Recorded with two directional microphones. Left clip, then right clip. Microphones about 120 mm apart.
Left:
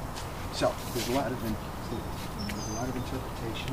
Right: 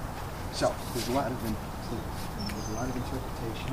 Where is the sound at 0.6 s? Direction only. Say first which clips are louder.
Even; centre (ahead or behind).